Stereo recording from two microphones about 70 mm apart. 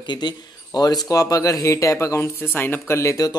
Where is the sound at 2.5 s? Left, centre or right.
Left.